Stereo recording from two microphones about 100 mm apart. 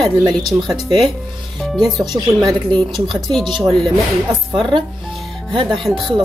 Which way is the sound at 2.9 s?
Centre (ahead or behind).